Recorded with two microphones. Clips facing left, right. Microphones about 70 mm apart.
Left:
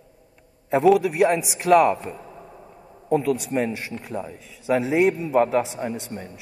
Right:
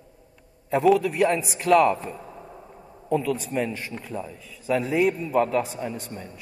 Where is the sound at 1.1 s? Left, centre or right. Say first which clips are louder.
Left 2 dB; left.